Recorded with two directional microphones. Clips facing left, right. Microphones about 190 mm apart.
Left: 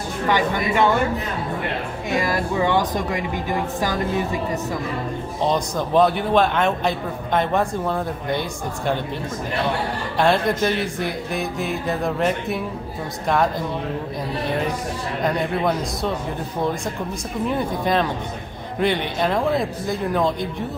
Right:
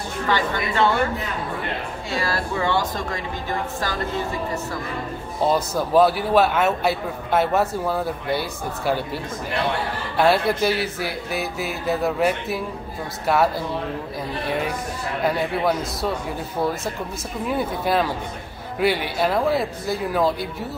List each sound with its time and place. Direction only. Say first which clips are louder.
0.3 s speech: left 3 dB; 15° left (ahead or behind)
2.0 s speech: left 4 dB; 15° left (ahead or behind)
5.4 s a man's voice: right 1 dB; 5° right (ahead or behind)
10.1 s a man's voice: even; 5° right (ahead or behind)
15.2 s a man's voice: even; 5° right (ahead or behind)
17.5 s a man's voice: even; 5° right (ahead or behind)